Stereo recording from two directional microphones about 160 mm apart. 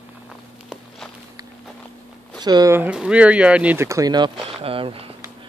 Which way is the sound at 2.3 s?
25° right (ahead or behind).